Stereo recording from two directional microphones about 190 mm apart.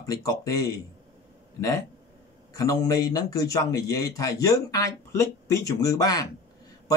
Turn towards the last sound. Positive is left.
turn(degrees=20)  # may be behind; listen again after turning